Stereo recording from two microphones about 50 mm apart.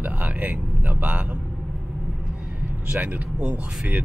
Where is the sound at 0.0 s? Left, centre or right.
Right.